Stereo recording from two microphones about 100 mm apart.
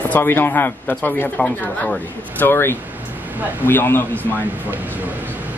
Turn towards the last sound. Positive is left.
turn(degrees=20)  # may be behind; listen again after turning